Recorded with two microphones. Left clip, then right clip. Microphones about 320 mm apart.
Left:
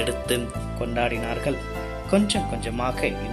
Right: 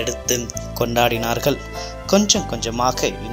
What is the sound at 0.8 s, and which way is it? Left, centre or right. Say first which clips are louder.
Speech: right 8 dB; centre.